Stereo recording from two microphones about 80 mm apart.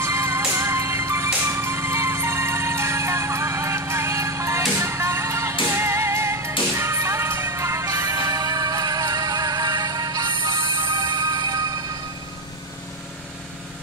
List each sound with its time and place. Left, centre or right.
0.0 s music: right
10.3 s music: right